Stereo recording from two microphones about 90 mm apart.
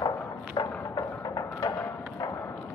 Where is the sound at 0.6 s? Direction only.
50° left (ahead or behind).